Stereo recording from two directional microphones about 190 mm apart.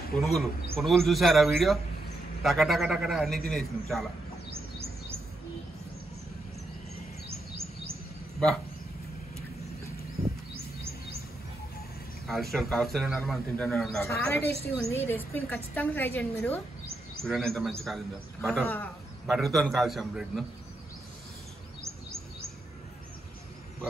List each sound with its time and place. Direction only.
0.2 s a man's voice: centre (ahead or behind)
4.5 s bird: 30° right (ahead or behind)
7.2 s a sound: 30° right (ahead or behind)
12.3 s a man's voice: centre (ahead or behind)
14.0 s a woman's voice: 15° left (ahead or behind)